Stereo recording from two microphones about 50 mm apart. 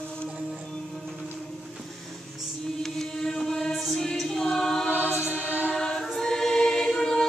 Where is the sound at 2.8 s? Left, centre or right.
Centre.